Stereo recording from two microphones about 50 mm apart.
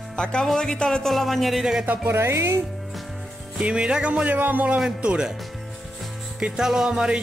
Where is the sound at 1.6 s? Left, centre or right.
Centre.